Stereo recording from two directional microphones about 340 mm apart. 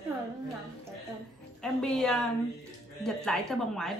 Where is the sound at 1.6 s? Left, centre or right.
Centre.